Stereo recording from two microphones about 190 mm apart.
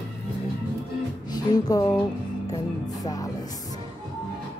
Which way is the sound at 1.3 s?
20° left (ahead or behind).